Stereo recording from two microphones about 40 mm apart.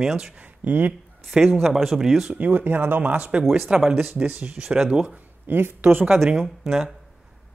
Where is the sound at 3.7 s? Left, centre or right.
Right.